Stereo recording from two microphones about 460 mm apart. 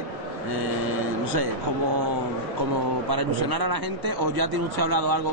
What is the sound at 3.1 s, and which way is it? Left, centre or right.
Speech, right.